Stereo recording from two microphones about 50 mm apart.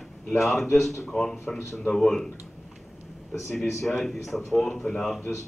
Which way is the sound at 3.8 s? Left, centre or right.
Centre.